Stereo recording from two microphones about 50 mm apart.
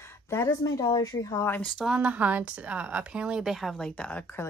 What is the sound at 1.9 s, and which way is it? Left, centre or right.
Speech, right.